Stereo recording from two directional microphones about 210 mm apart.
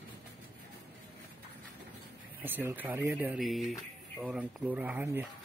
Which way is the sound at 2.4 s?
10° right (ahead or behind).